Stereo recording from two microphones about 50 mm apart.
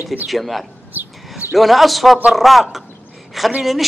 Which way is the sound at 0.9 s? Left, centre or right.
Right.